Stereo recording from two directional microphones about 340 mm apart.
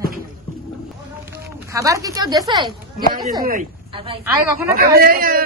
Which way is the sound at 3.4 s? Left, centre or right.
Right.